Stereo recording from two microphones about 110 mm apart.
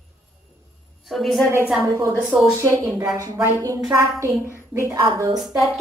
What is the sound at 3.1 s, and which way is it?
Speech, 30° right (ahead or behind).